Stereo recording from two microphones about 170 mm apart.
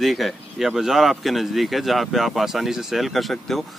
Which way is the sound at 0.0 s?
Centre (ahead or behind).